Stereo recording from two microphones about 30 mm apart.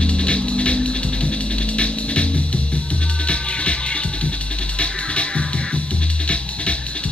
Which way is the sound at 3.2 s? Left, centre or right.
Left.